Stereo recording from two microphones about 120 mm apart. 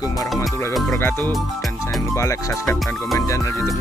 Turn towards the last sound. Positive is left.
turn(degrees=25)  # may be behind; listen again after turning